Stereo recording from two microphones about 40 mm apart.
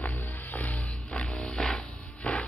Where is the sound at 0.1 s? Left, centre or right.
Left.